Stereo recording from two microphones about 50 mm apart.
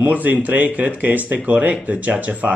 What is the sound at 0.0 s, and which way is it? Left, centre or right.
A man's voice, right.